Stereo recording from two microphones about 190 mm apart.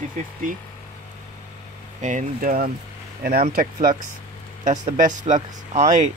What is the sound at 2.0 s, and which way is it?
Speech, 45° right (ahead or behind).